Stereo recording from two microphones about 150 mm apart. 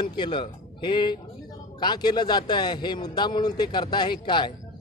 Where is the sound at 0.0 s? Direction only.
30° left (ahead or behind).